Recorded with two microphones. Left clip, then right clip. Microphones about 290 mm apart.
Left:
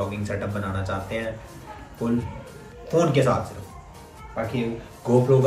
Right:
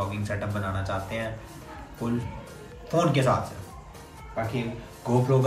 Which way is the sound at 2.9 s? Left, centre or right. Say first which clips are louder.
Left 3 dB; centre.